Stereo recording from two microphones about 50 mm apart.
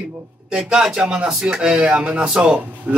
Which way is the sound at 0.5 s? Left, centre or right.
Centre.